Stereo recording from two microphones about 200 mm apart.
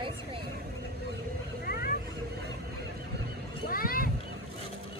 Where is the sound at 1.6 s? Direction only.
50° left (ahead or behind).